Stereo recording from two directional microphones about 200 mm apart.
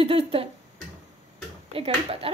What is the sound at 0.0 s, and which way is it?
Speech, 30° right (ahead or behind).